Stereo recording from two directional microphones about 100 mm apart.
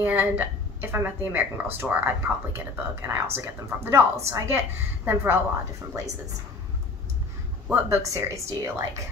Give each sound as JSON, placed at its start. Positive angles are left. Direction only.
{"t": 0.0, "sound": "a woman's voice", "side_deg": -20}
{"t": 7.6, "sound": "a woman's voice", "side_deg": -25}